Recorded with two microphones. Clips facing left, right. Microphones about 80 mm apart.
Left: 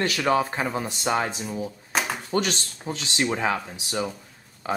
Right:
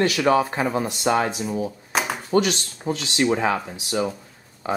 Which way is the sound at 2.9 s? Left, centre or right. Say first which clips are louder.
Right 6 dB; right.